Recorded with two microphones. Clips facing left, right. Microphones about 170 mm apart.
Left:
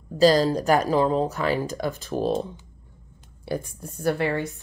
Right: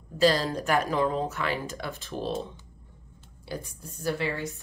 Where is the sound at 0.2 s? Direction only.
40° left (ahead or behind).